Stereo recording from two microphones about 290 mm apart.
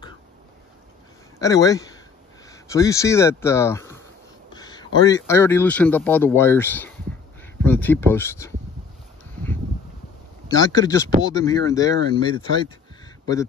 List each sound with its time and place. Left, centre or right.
1.4 s speech: centre
10.5 s speech: centre